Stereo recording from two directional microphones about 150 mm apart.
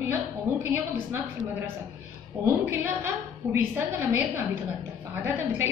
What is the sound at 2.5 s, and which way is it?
A woman's voice, 15° right (ahead or behind).